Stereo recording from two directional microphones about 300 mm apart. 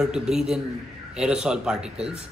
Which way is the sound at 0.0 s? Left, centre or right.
Centre.